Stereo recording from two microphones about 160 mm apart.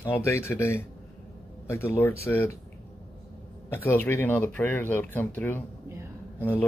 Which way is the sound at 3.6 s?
15° left (ahead or behind).